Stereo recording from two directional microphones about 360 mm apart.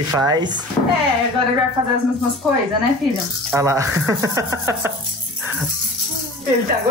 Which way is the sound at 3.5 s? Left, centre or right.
Centre.